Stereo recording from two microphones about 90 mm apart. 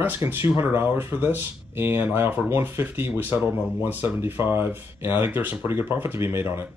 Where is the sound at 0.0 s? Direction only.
25° right (ahead or behind).